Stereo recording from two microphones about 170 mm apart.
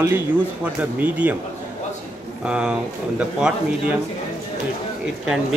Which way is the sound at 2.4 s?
5° right (ahead or behind).